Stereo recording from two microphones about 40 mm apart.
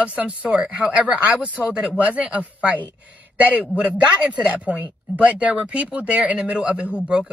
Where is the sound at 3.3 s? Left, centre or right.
Right.